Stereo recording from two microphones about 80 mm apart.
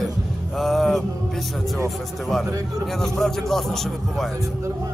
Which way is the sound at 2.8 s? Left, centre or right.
Centre.